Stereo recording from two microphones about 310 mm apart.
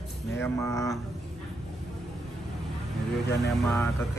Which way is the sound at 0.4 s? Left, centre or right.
Centre.